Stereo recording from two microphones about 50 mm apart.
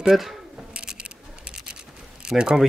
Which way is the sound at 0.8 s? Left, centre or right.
Centre.